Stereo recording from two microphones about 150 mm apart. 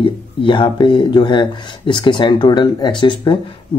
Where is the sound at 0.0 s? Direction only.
35° left (ahead or behind).